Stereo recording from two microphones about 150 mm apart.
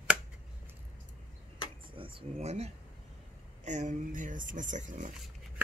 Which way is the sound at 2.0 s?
35° right (ahead or behind).